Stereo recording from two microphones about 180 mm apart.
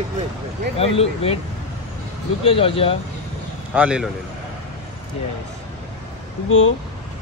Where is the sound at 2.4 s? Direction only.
30° left (ahead or behind).